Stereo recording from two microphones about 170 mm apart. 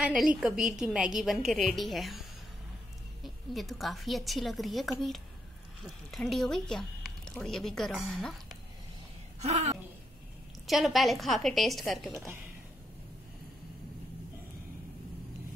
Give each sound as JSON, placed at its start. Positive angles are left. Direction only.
{"t": 0.0, "sound": "a woman's voice", "side_deg": -5}
{"t": 3.3, "sound": "a woman's voice", "side_deg": 0}
{"t": 9.4, "sound": "speech", "side_deg": -40}
{"t": 10.7, "sound": "a woman's voice", "side_deg": 0}